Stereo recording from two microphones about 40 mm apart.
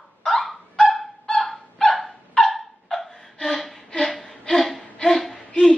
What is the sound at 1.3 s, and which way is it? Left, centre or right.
Dog, centre.